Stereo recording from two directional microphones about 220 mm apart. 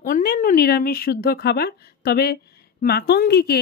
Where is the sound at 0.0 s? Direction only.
40° left (ahead or behind).